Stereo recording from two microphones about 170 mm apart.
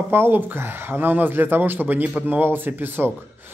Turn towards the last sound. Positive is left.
turn(degrees=-10)  # may be behind; listen again after turning